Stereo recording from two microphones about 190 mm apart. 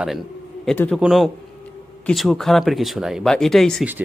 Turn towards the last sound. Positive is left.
turn(degrees=0)  # may be behind; listen again after turning